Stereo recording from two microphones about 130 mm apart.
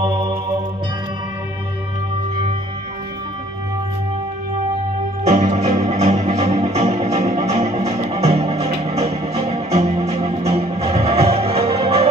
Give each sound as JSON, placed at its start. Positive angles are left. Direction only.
{"t": 5.3, "sound": "music", "side_deg": -55}